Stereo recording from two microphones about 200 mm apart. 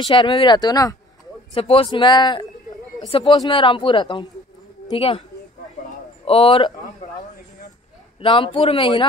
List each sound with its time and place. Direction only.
0.0 s speech: 25° left (ahead or behind)
5.9 s a sound: 30° left (ahead or behind)
8.2 s speech: 25° left (ahead or behind)